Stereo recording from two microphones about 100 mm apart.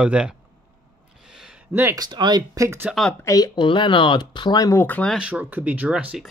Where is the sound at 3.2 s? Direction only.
35° left (ahead or behind).